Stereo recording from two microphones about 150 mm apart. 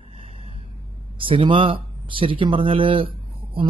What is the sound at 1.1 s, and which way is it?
Speech, 35° right (ahead or behind).